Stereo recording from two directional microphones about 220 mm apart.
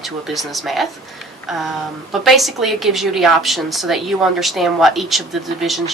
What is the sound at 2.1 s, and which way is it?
A woman's voice, centre (ahead or behind).